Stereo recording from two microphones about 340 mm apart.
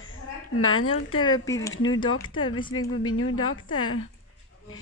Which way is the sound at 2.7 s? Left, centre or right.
Left.